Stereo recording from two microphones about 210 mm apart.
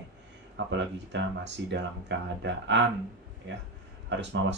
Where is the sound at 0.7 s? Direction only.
60° right (ahead or behind).